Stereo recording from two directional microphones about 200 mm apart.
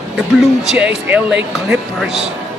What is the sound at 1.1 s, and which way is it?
Speech, 10° right (ahead or behind).